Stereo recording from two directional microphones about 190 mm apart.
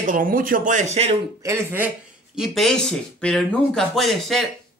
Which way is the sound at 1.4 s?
15° right (ahead or behind).